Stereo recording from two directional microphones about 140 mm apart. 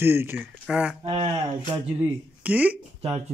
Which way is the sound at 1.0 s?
40° right (ahead or behind).